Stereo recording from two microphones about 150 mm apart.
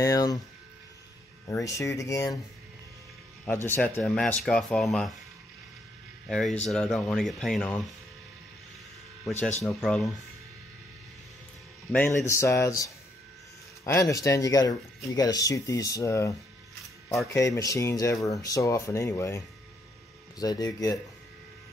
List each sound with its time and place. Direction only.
0.0 s speech: 25° left (ahead or behind)
1.5 s speech: 20° left (ahead or behind)
3.4 s speech: 15° left (ahead or behind)
6.2 s speech: 5° left (ahead or behind)
9.8 s speech: 5° left (ahead or behind)
12.3 s speech: 20° left (ahead or behind)